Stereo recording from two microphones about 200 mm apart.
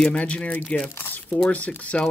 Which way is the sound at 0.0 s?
5° left (ahead or behind).